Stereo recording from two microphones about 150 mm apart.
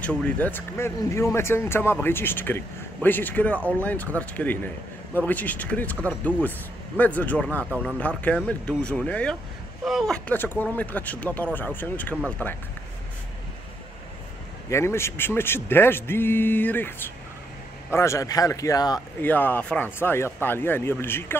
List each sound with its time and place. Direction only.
0.0 s speech: 10° left (ahead or behind)
14.7 s speech: 15° left (ahead or behind)
17.9 s a man's voice: 20° left (ahead or behind)
19.2 s speech: 10° left (ahead or behind)